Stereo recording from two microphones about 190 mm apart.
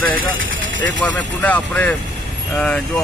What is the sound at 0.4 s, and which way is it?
Vehicle, 80° right.